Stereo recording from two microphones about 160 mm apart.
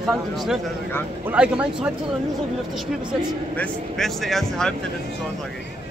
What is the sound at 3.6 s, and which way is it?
Speech, 5° left (ahead or behind).